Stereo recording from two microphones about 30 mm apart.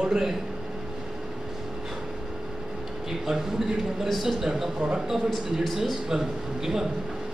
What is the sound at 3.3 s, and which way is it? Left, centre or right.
A man's voice, centre.